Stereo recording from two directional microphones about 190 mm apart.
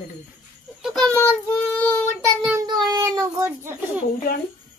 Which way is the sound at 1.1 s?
10° left (ahead or behind).